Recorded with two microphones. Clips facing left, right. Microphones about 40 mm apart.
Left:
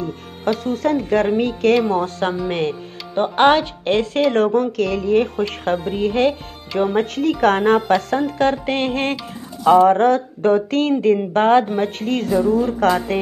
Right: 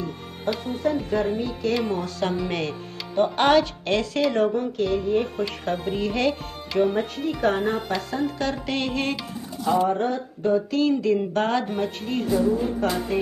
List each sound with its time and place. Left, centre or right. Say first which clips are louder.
0.7 s speech: left 5 dB; left
1.9 s speech: left 6 dB; left
4.3 s speech: left 6 dB; left
5.9 s speech: left 5 dB; left
6.8 s speech: left 4 dB; left
7.9 s speech: left 8 dB; left
9.7 s speech: left 10 dB; left
12.0 s speech: left 3 dB; left